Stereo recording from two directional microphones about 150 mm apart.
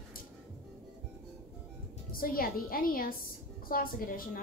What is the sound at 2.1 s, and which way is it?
A woman's voice, 75° left (ahead or behind).